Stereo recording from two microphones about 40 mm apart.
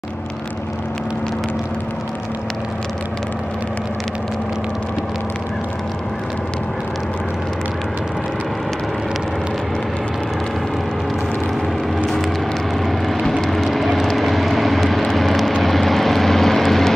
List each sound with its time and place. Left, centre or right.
12.8 s vehicle: centre